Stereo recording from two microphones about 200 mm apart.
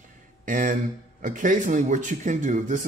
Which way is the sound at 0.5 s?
40° right (ahead or behind).